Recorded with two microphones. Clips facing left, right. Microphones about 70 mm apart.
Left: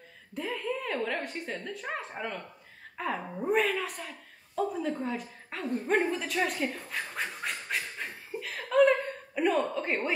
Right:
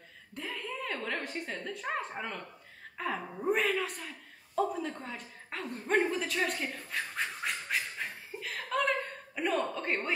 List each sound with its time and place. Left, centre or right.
0.3 s a woman's voice: centre
6.0 s a sound: centre
9.8 s a woman's voice: centre